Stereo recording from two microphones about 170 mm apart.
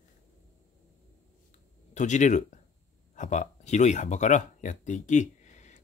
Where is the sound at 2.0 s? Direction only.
45° left (ahead or behind).